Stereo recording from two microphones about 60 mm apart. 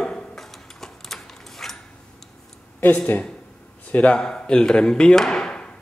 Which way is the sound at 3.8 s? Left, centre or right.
Left.